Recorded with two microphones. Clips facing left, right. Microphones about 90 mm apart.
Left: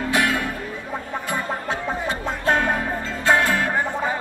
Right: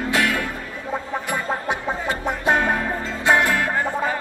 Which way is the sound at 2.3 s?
15° right (ahead or behind).